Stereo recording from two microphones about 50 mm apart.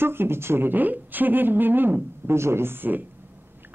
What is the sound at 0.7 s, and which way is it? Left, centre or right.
Speech, right.